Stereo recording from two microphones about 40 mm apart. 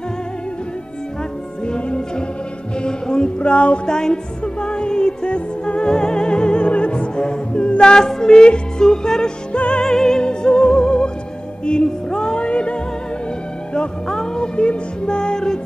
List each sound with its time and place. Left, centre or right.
1.7 s music: left
3.8 s music: centre
9.8 s music: centre
13.7 s music: centre